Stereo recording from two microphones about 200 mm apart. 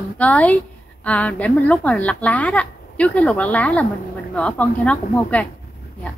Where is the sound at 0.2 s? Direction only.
5° left (ahead or behind).